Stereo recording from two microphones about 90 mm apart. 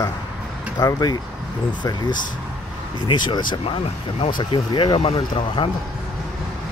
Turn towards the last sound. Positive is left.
turn(degrees=70)  # may be behind; listen again after turning